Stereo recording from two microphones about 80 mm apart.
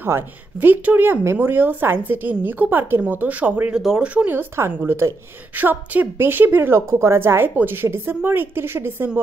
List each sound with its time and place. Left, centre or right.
0.0 s speech: right
3.7 s speech: centre
4.1 s speech: right